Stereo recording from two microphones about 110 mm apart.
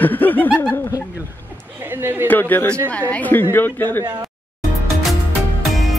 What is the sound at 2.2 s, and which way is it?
Speech, 15° left (ahead or behind).